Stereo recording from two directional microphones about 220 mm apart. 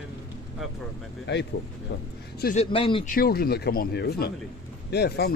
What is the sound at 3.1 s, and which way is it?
Speech, 45° left (ahead or behind).